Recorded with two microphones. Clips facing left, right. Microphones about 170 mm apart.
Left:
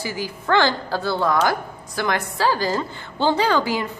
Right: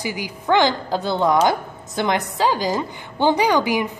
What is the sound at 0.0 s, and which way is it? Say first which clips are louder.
A woman's voice: right 1 dB; 15° right (ahead or behind).